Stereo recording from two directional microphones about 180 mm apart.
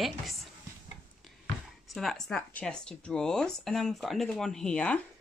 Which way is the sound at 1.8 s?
Centre (ahead or behind).